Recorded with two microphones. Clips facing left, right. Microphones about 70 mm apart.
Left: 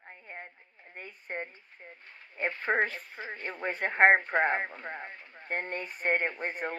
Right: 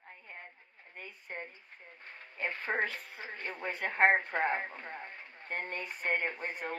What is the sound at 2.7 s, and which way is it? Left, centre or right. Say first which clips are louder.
Speech: left 6 dB; left.